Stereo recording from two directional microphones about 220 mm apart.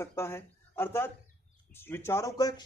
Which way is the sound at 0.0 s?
10° left (ahead or behind).